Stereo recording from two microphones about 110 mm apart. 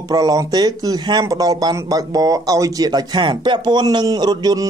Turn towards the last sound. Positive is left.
turn(degrees=-35)  # may be behind; listen again after turning